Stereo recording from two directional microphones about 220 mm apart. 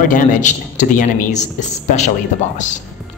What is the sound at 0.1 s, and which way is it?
A man's voice, 35° left (ahead or behind).